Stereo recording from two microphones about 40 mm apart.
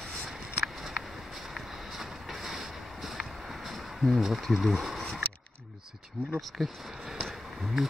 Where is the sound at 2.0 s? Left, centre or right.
Centre.